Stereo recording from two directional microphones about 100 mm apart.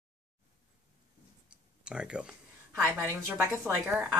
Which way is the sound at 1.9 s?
10° right (ahead or behind).